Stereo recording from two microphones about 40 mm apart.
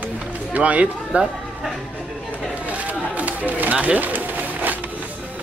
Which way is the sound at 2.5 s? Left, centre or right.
Right.